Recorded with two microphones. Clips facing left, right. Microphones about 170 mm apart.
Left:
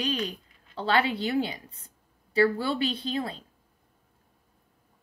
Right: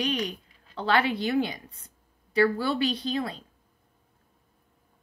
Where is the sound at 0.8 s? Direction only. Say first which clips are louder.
Right 1 dB; 30° left (ahead or behind).